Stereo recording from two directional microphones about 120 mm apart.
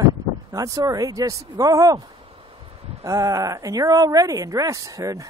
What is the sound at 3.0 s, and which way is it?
Speech, 30° right (ahead or behind).